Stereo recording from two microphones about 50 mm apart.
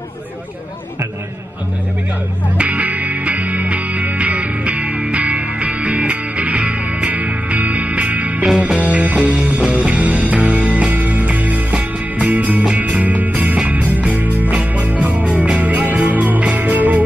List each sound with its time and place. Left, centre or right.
2.5 s music: right